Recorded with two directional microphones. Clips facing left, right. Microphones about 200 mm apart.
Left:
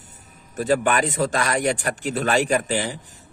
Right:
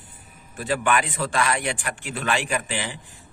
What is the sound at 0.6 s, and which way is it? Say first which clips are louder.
A man's voice: left 4 dB; 40° left (ahead or behind).